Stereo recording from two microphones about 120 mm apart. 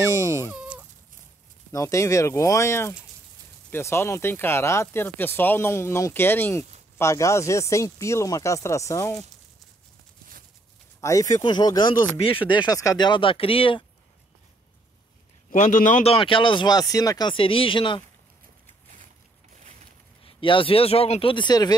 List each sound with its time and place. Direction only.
0.5 s a sound: 10° right (ahead or behind)
1.7 s speech: 25° left (ahead or behind)
11.0 s speech: 25° left (ahead or behind); by 13.8 s 50° left (ahead or behind)
15.5 s a man's voice: 85° left
16.1 s speech: 45° left (ahead or behind); by 17.3 s 30° left (ahead or behind)
17.3 s speech: 45° left (ahead or behind)
20.2 s speech: 45° left (ahead or behind)